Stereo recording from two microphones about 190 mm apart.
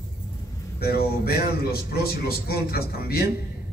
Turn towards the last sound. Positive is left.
turn(degrees=55)  # may be behind; listen again after turning